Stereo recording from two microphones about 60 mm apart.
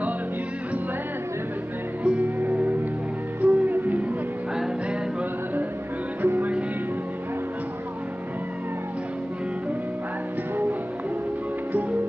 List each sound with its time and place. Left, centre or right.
2.0 s music: right
6.2 s music: right